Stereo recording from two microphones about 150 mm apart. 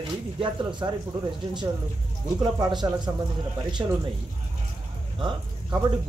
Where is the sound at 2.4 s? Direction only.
30° right (ahead or behind).